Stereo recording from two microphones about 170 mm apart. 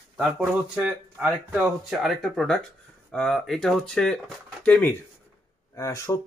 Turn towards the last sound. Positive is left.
turn(degrees=20)  # may be behind; listen again after turning